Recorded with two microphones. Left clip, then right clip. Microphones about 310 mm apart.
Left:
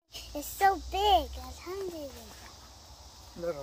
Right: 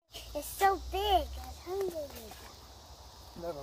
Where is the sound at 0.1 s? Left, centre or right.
Centre.